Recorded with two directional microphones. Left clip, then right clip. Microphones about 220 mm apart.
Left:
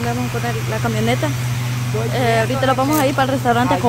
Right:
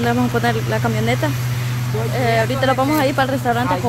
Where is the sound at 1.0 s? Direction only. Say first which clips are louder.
Even; centre (ahead or behind).